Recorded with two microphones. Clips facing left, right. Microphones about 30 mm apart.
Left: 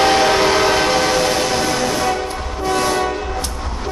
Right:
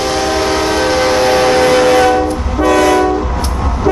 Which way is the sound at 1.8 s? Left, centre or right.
Right.